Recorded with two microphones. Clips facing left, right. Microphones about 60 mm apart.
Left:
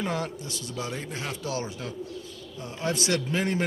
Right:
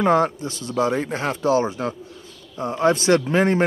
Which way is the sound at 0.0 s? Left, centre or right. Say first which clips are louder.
Right 12 dB; right.